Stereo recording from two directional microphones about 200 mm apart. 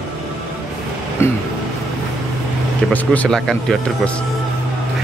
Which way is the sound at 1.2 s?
10° left (ahead or behind).